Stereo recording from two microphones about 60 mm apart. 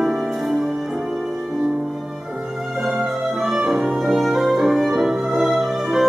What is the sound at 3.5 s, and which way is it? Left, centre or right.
Music, centre.